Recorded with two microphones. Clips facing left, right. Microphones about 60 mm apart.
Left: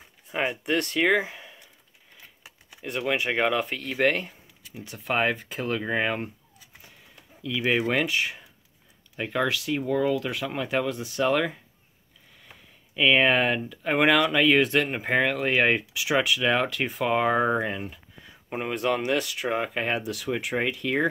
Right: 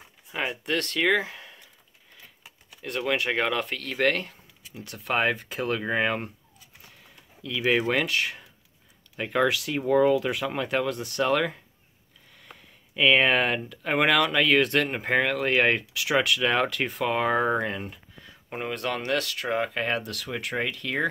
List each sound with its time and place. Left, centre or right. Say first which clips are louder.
0.3 s speech: left 2 dB; centre
2.7 s speech: even; centre
7.4 s speech: right 1 dB; centre
12.9 s speech: even; centre